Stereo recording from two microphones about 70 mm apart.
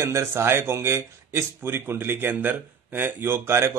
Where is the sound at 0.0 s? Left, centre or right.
Right.